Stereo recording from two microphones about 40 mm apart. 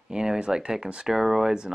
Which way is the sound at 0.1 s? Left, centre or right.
Centre.